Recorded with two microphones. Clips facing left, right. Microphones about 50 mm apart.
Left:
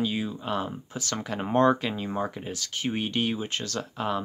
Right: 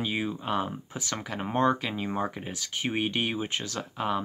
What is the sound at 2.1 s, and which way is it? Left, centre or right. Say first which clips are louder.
Speech: left 1 dB; centre.